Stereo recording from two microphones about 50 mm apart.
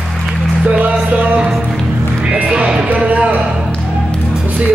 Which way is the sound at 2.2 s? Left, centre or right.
Right.